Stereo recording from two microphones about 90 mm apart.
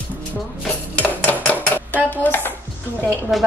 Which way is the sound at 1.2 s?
20° left (ahead or behind).